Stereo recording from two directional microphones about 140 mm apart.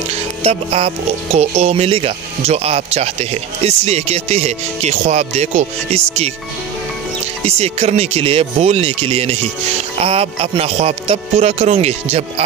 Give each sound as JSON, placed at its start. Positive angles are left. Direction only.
{"t": 0.4, "sound": "speech", "side_deg": -45}
{"t": 7.4, "sound": "speech", "side_deg": -50}